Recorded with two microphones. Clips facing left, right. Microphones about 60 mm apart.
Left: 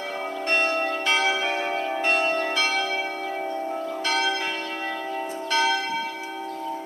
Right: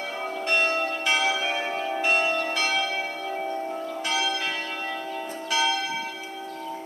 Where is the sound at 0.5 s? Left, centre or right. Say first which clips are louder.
Left 1 dB; left.